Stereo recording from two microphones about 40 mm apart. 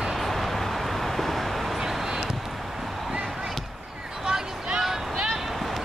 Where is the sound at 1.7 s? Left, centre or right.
Centre.